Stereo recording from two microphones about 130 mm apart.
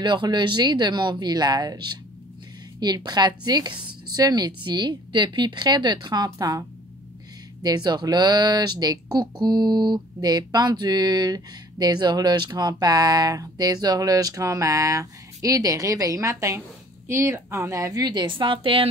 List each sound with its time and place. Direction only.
0.0 s speech: 35° right (ahead or behind)
7.6 s a woman's voice: 30° right (ahead or behind)